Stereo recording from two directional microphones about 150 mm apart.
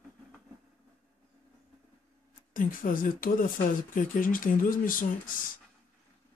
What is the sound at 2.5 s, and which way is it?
Speech, 65° left (ahead or behind).